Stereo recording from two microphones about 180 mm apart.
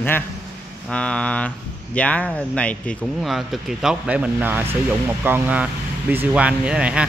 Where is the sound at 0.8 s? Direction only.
5° left (ahead or behind).